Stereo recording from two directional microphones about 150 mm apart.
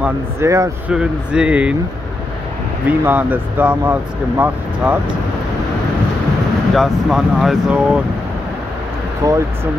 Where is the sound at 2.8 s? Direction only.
10° right (ahead or behind).